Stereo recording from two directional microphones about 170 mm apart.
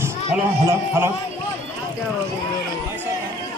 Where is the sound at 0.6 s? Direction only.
15° right (ahead or behind).